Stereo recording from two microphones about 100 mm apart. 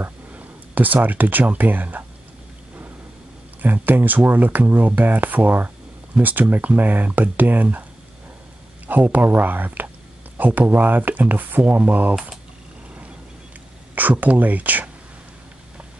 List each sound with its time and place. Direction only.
0.0 s speech: 15° right (ahead or behind)
3.6 s speech: 20° right (ahead or behind)
8.8 s speech: 15° right (ahead or behind)
13.9 s speech: 15° right (ahead or behind)